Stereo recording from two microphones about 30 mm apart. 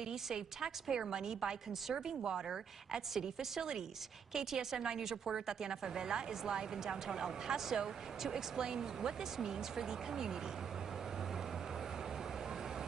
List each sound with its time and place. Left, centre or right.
0.0 s a woman's voice: centre